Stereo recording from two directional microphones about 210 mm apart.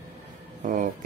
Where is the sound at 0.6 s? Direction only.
35° right (ahead or behind).